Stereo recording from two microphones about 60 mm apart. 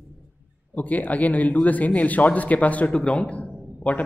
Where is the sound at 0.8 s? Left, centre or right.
Left.